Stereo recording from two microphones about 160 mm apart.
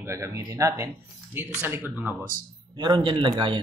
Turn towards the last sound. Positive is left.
turn(degrees=-30)  # may be behind; listen again after turning